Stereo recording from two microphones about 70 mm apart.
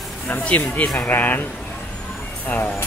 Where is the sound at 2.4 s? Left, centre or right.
Left.